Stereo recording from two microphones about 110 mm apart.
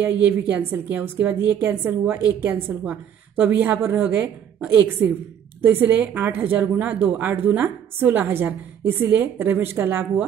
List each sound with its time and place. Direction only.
0.0 s a woman's voice: 20° right (ahead or behind)